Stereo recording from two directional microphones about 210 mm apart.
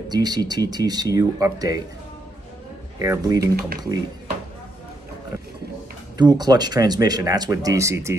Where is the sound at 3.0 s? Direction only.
15° right (ahead or behind).